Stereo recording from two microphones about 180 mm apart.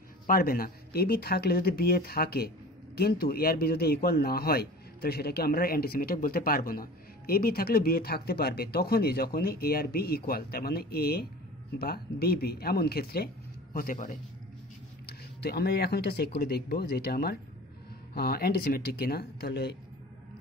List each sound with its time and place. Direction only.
0.3 s a man's voice: 55° left (ahead or behind)
13.7 s a man's voice: 50° left (ahead or behind)
15.0 s a man's voice: 65° left (ahead or behind)